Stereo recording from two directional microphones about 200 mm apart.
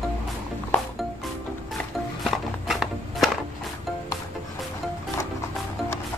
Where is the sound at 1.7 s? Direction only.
Centre (ahead or behind).